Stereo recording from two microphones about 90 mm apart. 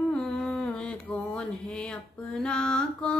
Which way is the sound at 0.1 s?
10° left (ahead or behind).